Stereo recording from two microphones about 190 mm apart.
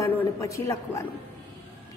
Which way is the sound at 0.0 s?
15° left (ahead or behind).